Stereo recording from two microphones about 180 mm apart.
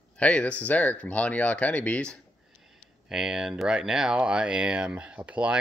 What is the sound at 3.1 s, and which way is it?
Speech, 5° right (ahead or behind).